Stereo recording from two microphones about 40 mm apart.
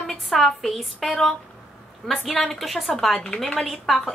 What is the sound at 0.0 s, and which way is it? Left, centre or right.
A woman's voice, centre.